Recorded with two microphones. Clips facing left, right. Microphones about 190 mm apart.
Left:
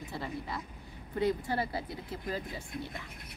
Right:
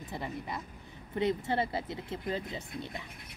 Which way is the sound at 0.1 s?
20° right (ahead or behind).